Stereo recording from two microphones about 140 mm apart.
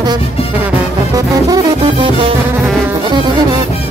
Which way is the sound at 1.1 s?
25° right (ahead or behind).